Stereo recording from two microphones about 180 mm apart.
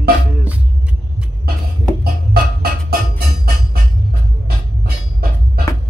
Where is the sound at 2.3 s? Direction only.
55° right (ahead or behind).